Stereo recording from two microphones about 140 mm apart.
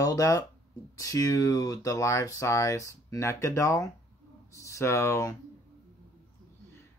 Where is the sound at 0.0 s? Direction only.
25° left (ahead or behind).